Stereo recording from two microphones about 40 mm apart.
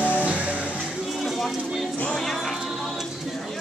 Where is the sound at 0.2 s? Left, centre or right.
Right.